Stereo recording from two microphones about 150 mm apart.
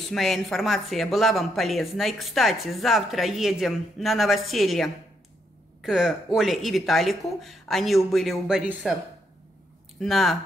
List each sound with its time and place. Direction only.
0.1 s speech: centre (ahead or behind)
9.9 s speech: centre (ahead or behind)